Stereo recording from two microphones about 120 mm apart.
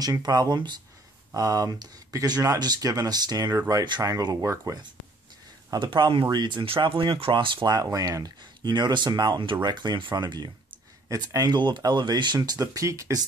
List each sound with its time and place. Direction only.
0.0 s speech: 30° right (ahead or behind)
5.7 s speech: 40° right (ahead or behind)